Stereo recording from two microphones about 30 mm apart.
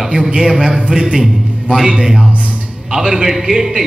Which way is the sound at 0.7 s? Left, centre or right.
Right.